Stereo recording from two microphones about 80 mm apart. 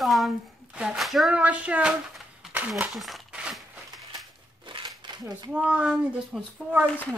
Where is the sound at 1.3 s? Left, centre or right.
Centre.